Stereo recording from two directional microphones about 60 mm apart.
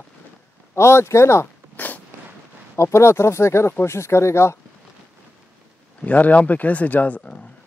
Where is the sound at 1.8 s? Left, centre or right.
Left.